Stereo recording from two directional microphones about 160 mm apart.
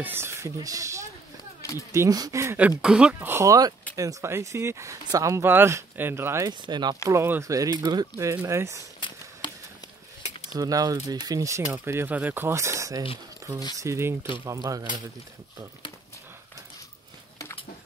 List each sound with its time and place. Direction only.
0.0 s speech: 15° right (ahead or behind)
1.6 s a sound: 20° left (ahead or behind)
1.9 s speech: 20° right (ahead or behind)
6.6 s speech: 25° right (ahead or behind)
7.1 s speech: 15° right (ahead or behind)
10.5 s speech: 20° right (ahead or behind)